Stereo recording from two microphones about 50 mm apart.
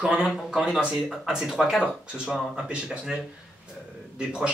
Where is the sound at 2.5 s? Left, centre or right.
Right.